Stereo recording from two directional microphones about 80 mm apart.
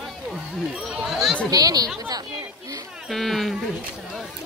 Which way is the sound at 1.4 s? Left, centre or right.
Right.